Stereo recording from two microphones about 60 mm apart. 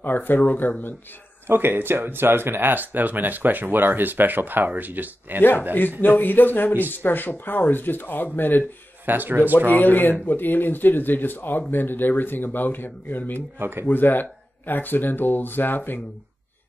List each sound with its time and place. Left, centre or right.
0.0 s speech: left
1.5 s speech: right
5.8 s speech: left
9.0 s speech: right
9.7 s speech: left
13.6 s speech: right
13.8 s speech: left